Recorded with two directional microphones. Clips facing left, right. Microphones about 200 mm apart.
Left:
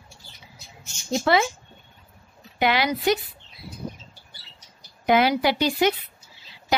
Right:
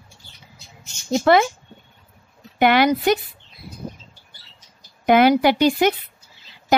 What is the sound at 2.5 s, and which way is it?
Speech, 55° right (ahead or behind).